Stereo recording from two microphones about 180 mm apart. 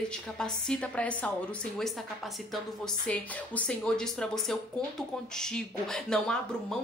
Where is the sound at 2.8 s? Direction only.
5° left (ahead or behind).